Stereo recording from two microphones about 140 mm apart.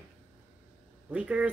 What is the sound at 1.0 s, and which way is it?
Speech, 10° right (ahead or behind).